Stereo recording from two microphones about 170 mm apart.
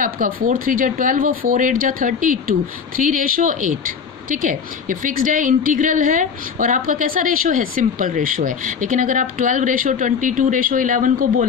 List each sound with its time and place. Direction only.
0.0 s a woman's voice: 55° right (ahead or behind)